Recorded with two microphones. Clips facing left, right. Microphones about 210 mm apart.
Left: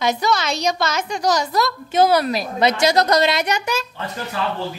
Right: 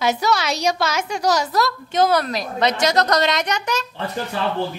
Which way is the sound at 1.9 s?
10° left (ahead or behind).